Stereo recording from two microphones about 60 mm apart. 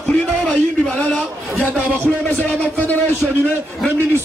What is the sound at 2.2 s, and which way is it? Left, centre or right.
Speech, left.